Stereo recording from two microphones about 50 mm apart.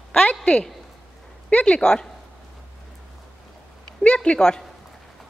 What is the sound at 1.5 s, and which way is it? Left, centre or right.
Speech, left.